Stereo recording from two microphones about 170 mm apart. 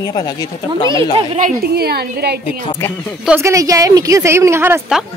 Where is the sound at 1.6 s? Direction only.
65° right (ahead or behind).